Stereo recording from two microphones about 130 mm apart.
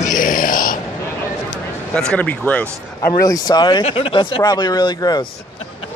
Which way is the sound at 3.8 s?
45° left (ahead or behind).